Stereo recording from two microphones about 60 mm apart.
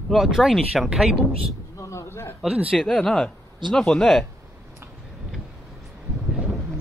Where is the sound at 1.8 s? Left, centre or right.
Left.